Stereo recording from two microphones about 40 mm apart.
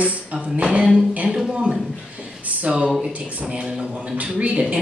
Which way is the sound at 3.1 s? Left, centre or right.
Right.